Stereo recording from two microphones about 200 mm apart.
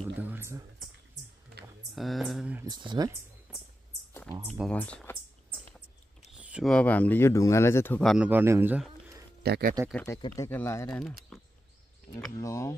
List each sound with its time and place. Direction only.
0.2 s speech: 10° right (ahead or behind)
2.0 s speech: centre (ahead or behind)
2.6 s speech: 20° right (ahead or behind)
4.6 s speech: 5° left (ahead or behind)
6.3 s a sound: 5° right (ahead or behind)
6.7 s speech: 5° left (ahead or behind)
9.4 s speech: 50° right (ahead or behind)
10.0 s speech: 15° left (ahead or behind)
10.9 s speech: centre (ahead or behind)
12.4 s speech: 15° left (ahead or behind)